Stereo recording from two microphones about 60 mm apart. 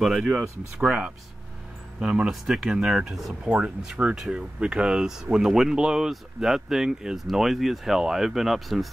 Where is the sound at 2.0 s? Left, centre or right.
Centre.